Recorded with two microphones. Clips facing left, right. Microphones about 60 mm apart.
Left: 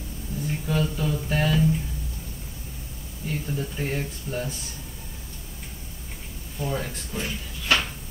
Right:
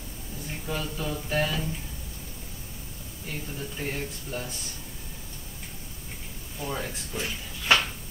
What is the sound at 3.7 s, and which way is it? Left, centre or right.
Speech, centre.